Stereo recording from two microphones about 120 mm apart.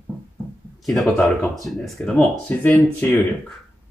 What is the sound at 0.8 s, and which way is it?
Speech, centre (ahead or behind).